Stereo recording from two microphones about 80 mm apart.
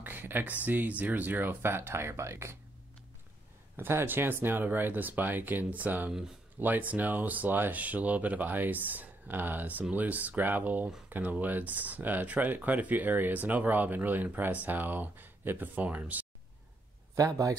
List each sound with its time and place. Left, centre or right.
0.0 s speech: right
3.7 s speech: right
17.1 s speech: right